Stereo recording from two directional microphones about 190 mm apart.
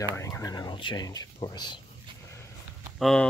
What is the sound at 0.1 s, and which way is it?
Speech, 15° left (ahead or behind).